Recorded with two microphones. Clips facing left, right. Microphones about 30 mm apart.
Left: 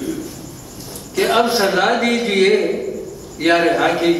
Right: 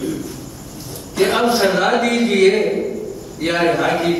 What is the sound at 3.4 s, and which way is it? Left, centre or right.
Speech, left.